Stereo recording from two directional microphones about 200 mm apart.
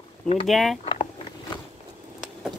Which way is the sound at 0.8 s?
30° left (ahead or behind).